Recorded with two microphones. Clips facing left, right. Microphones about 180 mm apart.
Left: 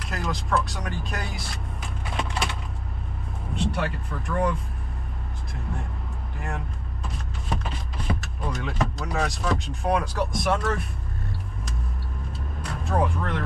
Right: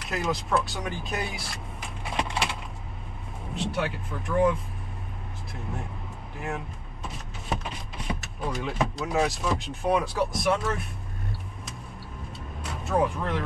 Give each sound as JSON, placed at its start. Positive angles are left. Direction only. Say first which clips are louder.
{"t": 0.0, "sound": "speech", "louder": "right 2 dB", "side_deg": 0}
{"t": 3.5, "sound": "speech", "louder": "left 1 dB", "side_deg": 0}
{"t": 7.1, "sound": "a sound", "louder": "even", "side_deg": 0}
{"t": 8.2, "sound": "speech", "louder": "even", "side_deg": 0}
{"t": 12.6, "sound": "speech", "louder": "even", "side_deg": 0}